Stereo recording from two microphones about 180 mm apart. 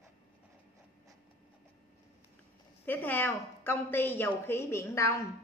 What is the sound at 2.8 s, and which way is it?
A woman's voice, 10° left (ahead or behind).